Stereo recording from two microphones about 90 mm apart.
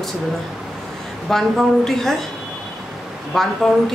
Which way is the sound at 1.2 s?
5° left (ahead or behind).